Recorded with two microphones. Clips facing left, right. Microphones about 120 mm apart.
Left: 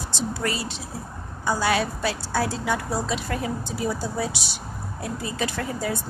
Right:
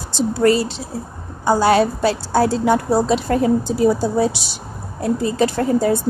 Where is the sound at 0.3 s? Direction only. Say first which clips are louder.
Right 15 dB; 35° right (ahead or behind).